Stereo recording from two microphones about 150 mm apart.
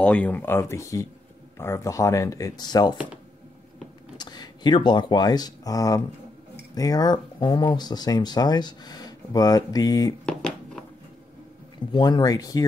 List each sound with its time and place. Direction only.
0.0 s speech: 10° left (ahead or behind); by 3.0 s 25° left (ahead or behind)
4.2 s speech: 30° left (ahead or behind)
10.2 s a sound: 5° left (ahead or behind)
11.9 s speech: 30° left (ahead or behind)